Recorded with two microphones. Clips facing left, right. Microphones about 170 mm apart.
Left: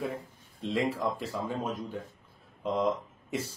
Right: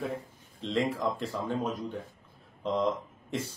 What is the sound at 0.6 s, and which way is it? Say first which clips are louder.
Speech: even; 10° left (ahead or behind).